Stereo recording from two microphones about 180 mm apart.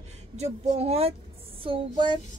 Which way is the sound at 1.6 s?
25° right (ahead or behind).